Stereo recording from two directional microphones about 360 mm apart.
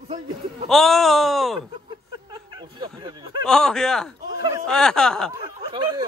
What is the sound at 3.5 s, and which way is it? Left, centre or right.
Speech, centre.